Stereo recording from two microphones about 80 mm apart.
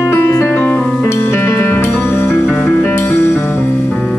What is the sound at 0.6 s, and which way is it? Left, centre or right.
Music, left.